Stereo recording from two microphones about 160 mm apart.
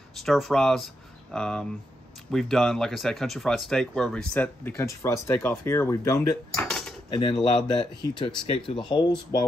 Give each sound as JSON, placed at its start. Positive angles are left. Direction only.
{"t": 0.2, "sound": "speech", "side_deg": 0}
{"t": 6.7, "sound": "cutlery", "side_deg": 0}
{"t": 7.1, "sound": "speech", "side_deg": 30}